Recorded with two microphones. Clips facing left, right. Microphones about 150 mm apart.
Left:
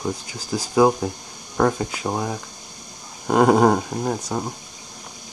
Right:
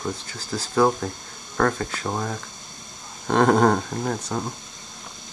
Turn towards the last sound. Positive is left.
turn(degrees=15)  # may be behind; listen again after turning